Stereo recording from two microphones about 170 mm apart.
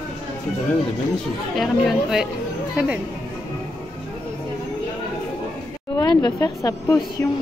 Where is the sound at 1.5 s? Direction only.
Centre (ahead or behind).